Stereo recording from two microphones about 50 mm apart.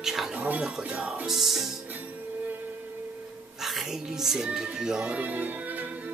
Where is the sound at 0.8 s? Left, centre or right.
Right.